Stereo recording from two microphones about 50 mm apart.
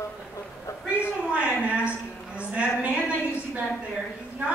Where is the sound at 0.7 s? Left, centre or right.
Left.